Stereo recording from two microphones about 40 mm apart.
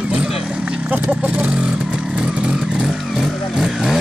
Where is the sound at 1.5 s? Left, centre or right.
Right.